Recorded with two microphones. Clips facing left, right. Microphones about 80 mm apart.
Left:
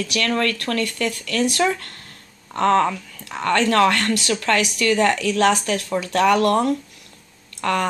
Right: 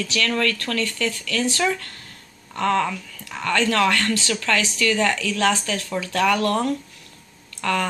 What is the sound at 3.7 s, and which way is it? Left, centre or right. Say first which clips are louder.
Speech: left 3 dB; left.